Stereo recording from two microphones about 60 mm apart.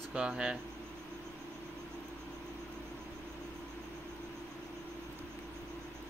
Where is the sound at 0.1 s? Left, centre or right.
Centre.